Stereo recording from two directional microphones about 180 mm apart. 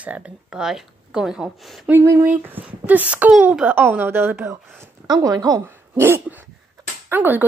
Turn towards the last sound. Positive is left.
turn(degrees=-10)  # may be behind; listen again after turning